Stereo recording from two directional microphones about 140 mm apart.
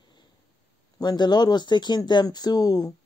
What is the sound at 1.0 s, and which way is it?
Speech, 30° left (ahead or behind).